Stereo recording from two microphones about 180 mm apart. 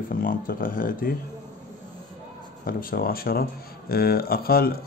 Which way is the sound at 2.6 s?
55° left (ahead or behind).